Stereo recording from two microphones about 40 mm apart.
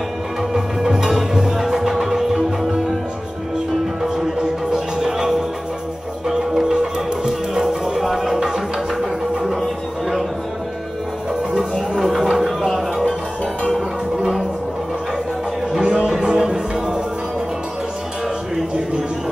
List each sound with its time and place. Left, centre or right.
0.4 s music: centre
4.4 s music: centre
12.0 s music: centre
15.7 s a sound: right
16.2 s music: right